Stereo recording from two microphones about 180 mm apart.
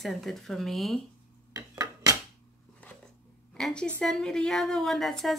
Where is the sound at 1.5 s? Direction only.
20° right (ahead or behind).